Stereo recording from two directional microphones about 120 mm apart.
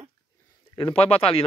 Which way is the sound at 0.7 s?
50° left (ahead or behind).